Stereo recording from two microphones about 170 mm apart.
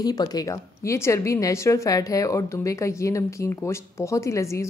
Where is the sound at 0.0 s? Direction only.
25° left (ahead or behind).